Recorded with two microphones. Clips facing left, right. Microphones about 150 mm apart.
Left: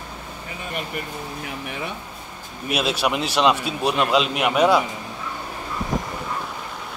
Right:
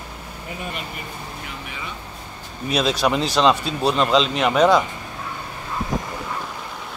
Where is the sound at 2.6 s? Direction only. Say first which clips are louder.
Right 2 dB; 10° left (ahead or behind).